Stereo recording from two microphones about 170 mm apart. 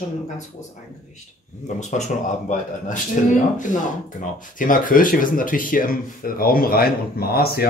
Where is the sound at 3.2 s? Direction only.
50° left (ahead or behind).